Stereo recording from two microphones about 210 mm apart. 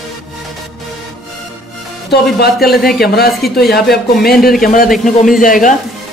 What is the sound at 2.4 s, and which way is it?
A man's voice, 45° left (ahead or behind).